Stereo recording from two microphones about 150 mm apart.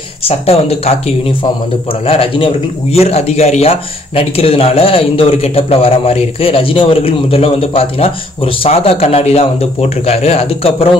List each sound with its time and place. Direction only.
0.2 s speech: 40° left (ahead or behind)